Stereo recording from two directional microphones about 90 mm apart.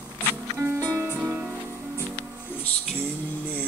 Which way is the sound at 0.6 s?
30° right (ahead or behind).